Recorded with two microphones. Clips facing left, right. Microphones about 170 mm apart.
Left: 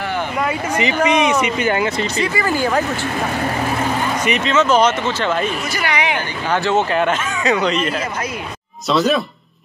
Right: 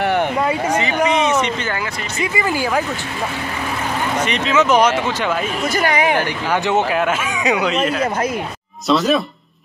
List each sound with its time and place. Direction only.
1.0 s speech: 15° left (ahead or behind)
2.1 s speech: 20° right (ahead or behind)
4.5 s speech: 15° right (ahead or behind)
5.8 s a woman's voice: 45° right (ahead or behind)
6.5 s speech: 15° right (ahead or behind)
6.9 s speech: 5° right (ahead or behind)